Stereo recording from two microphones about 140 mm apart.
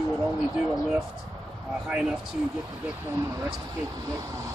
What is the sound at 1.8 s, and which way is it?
Speech, 5° right (ahead or behind).